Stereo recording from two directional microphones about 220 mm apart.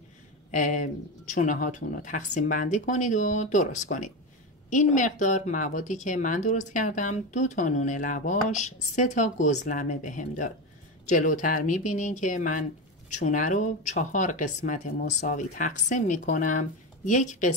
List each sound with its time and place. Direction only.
0.5 s speech: 35° left (ahead or behind)